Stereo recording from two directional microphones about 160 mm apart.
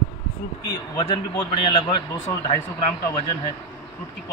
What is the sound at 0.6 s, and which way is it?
A man's voice, 25° left (ahead or behind).